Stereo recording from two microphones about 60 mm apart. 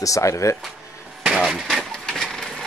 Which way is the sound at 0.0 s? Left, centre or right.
Left.